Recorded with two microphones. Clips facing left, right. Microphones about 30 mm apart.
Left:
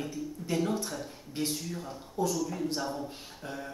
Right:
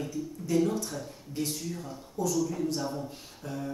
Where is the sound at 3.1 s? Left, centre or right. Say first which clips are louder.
Right 1 dB; centre.